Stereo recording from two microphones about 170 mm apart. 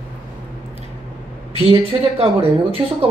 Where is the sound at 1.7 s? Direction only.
30° right (ahead or behind).